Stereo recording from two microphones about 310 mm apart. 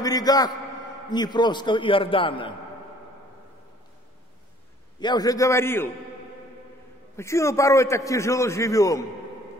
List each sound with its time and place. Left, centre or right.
0.0 s a man's voice: centre
5.0 s a man's voice: centre
7.2 s a man's voice: centre